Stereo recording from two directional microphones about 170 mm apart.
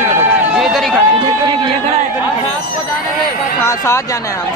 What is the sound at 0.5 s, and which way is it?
Speech, centre (ahead or behind).